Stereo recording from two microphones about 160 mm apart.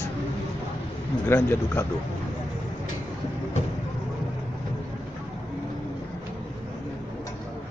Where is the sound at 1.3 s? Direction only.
15° left (ahead or behind).